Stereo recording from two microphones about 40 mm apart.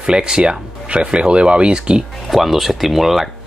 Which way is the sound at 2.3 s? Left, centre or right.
Centre.